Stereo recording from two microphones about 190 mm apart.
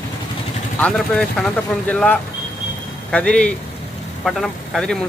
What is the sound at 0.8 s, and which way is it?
Speech, 5° left (ahead or behind).